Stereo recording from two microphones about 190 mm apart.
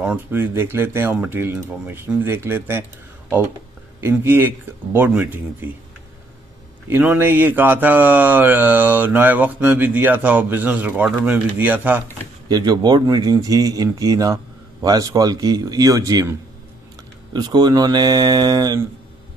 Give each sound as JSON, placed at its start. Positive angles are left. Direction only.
{"t": 0.0, "sound": "speech", "side_deg": -10}
{"t": 4.0, "sound": "speech", "side_deg": -10}
{"t": 6.9, "sound": "speech", "side_deg": -10}
{"t": 12.4, "sound": "speech", "side_deg": -20}